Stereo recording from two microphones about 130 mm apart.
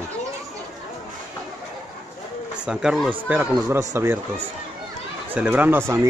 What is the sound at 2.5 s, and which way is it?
Speech, 5° right (ahead or behind).